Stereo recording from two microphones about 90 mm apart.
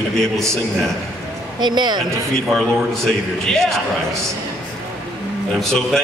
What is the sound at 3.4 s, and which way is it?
Speech, 5° left (ahead or behind).